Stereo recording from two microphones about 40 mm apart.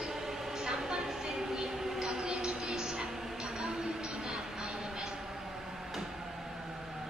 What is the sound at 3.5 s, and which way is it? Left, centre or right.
Vehicle, centre.